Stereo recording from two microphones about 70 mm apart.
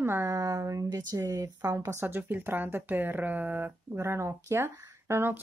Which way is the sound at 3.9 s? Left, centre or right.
Right.